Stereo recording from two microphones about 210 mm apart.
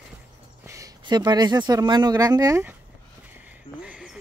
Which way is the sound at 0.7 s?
15° right (ahead or behind).